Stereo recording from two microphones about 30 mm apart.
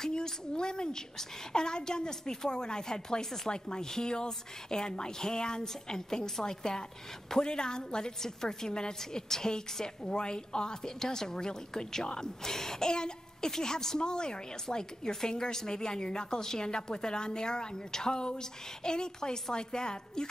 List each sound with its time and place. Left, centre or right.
0.1 s a woman's voice: left